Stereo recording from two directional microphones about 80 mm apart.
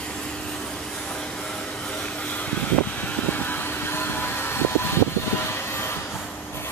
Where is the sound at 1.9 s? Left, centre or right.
Centre.